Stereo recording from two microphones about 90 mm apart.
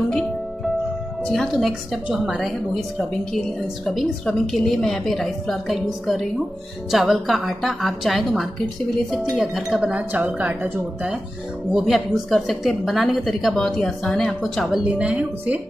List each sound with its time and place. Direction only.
0.1 s music: 5° left (ahead or behind)
1.2 s a woman's voice: 5° left (ahead or behind)
9.8 s speech: 15° right (ahead or behind)
11.7 s a woman's voice: 5° right (ahead or behind)
14.8 s speech: 15° right (ahead or behind)